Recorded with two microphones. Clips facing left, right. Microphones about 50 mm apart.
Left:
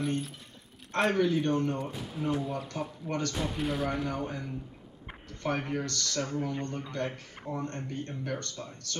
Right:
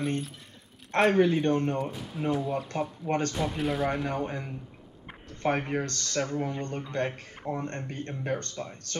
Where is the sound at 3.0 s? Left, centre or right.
Right.